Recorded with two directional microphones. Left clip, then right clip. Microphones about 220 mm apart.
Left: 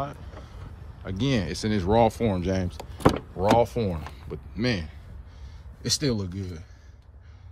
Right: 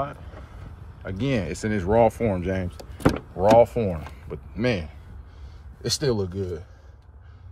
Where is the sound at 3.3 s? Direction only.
10° left (ahead or behind).